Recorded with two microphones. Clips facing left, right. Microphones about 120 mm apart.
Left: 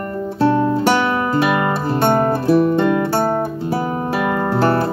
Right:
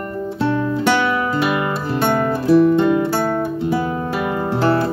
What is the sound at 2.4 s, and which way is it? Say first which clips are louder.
Music: right 4 dB; 55° left (ahead or behind).